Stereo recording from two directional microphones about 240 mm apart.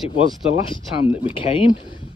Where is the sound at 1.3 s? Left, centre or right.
Left.